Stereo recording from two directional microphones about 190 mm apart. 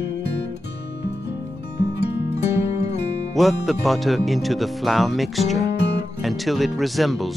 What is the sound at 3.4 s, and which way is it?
Speech, centre (ahead or behind).